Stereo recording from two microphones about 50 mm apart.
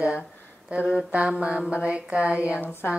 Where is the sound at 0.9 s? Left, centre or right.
Right.